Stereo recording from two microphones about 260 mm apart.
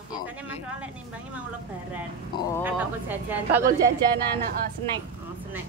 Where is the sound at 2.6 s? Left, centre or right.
Centre.